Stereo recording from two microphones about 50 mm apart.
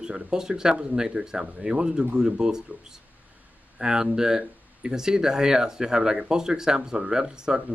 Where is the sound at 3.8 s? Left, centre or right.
Centre.